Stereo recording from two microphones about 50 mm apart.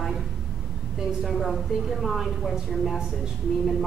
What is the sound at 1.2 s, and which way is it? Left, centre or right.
A woman's voice, centre.